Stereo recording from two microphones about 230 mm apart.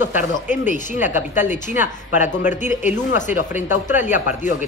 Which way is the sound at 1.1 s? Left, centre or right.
Left.